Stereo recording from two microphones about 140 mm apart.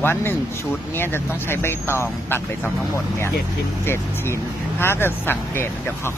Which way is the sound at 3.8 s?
15° left (ahead or behind).